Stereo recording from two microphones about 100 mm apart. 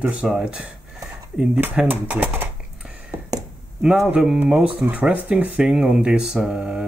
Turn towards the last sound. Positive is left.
turn(degrees=-10)  # may be behind; listen again after turning